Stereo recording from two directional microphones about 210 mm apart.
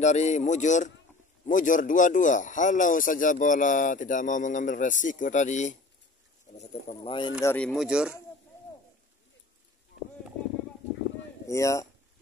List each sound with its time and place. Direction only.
0.0 s speech: 35° left (ahead or behind)
7.4 s speech: 5° left (ahead or behind)
11.4 s speech: 15° left (ahead or behind)